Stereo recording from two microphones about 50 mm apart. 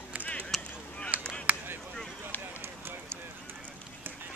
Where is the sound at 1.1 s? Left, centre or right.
Right.